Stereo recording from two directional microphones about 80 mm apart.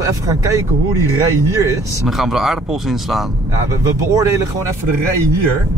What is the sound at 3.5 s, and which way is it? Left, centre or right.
Speech, right.